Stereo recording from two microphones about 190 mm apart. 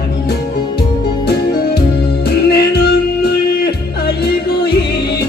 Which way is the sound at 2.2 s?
60° left (ahead or behind).